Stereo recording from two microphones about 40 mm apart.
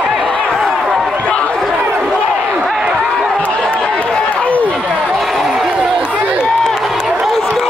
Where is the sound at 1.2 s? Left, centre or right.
Left.